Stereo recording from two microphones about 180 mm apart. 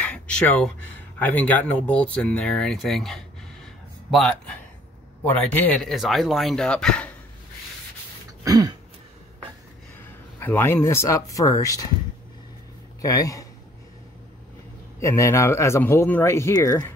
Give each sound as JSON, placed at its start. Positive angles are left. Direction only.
{"t": 0.0, "sound": "a sound", "side_deg": 5}
{"t": 1.2, "sound": "speech", "side_deg": 10}
{"t": 8.5, "sound": "throat clearing", "side_deg": -20}
{"t": 10.4, "sound": "speech", "side_deg": 10}
{"t": 13.0, "sound": "a man's voice", "side_deg": 20}
{"t": 15.0, "sound": "speech", "side_deg": 15}